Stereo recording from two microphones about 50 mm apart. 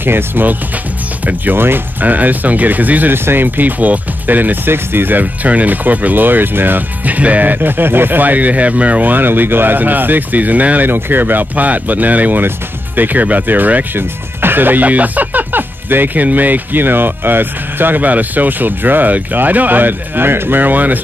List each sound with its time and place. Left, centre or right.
0.0 s speech: right
10.9 s speech: right
13.9 s speech: right